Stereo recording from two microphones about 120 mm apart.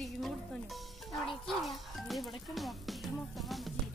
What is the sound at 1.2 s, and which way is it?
Music, centre (ahead or behind).